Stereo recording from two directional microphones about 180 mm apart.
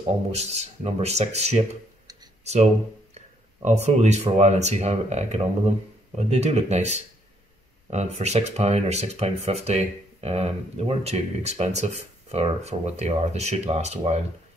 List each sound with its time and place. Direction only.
0.3 s speech: 35° right (ahead or behind)